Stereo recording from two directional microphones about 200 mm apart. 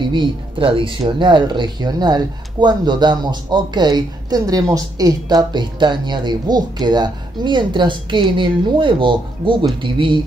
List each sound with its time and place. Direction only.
0.0 s speech: 25° right (ahead or behind)